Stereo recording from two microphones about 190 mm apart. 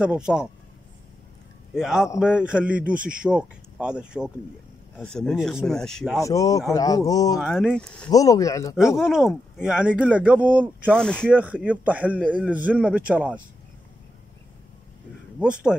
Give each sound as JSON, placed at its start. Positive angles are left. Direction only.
{"t": 0.0, "sound": "speech", "side_deg": -5}
{"t": 1.8, "sound": "speech", "side_deg": -5}
{"t": 6.2, "sound": "speech", "side_deg": 15}
{"t": 7.3, "sound": "speech", "side_deg": -5}
{"t": 8.1, "sound": "speech", "side_deg": 15}
{"t": 8.7, "sound": "speech", "side_deg": 0}
{"t": 10.9, "sound": "speech", "side_deg": 5}
{"t": 11.2, "sound": "speech", "side_deg": -5}
{"t": 15.3, "sound": "speech", "side_deg": -5}